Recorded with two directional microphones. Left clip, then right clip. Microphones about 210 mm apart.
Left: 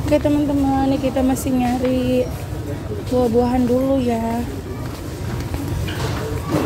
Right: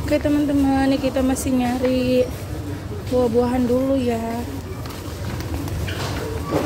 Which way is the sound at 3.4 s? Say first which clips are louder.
Left 2 dB; centre (ahead or behind).